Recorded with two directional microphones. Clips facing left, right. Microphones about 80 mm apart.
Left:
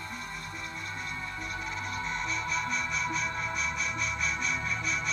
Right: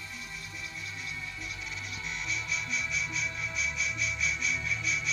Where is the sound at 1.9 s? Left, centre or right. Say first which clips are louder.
Left 3 dB; left.